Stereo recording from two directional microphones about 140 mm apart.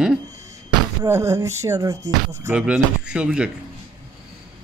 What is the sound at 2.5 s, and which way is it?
Speech, 5° right (ahead or behind).